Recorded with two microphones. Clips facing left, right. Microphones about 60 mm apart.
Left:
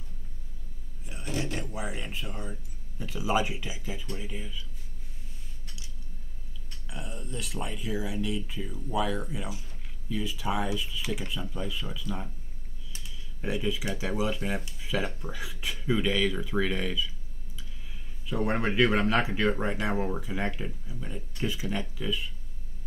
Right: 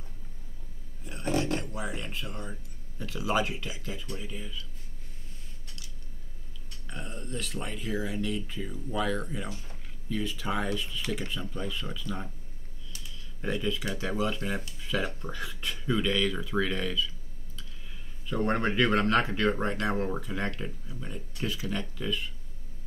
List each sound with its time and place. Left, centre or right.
1.2 s a sound: right
1.5 s speech: centre
7.2 s speech: centre
13.4 s speech: centre
18.3 s speech: centre